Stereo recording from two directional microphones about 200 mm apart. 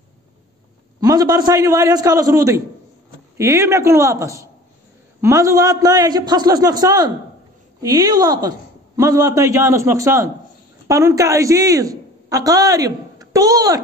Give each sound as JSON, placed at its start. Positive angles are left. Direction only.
{"t": 1.0, "sound": "a woman's voice", "side_deg": -20}